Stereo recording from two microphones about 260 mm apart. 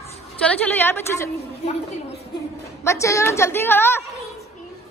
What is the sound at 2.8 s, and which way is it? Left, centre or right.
A woman's voice, centre.